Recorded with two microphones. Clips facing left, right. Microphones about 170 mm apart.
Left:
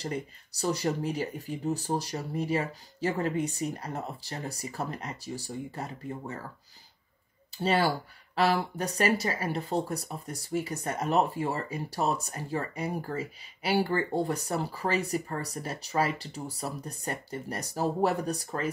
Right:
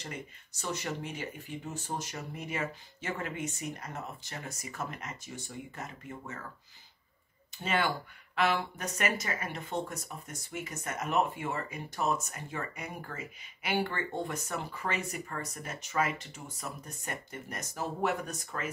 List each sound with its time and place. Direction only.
0.0 s speech: 35° left (ahead or behind)
7.5 s speech: 35° left (ahead or behind)